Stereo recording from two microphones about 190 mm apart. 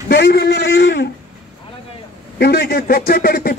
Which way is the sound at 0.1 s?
60° left (ahead or behind).